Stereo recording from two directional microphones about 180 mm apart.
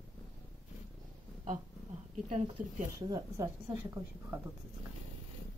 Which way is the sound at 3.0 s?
25° right (ahead or behind).